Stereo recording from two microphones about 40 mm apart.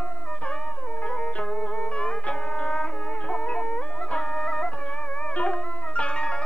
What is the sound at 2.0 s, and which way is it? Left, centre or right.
Music, left.